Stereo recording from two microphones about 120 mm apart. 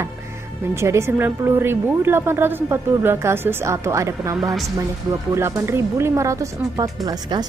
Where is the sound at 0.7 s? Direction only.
25° right (ahead or behind).